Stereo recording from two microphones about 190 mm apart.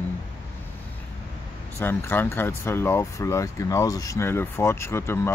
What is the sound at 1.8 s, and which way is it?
Speech, 10° left (ahead or behind).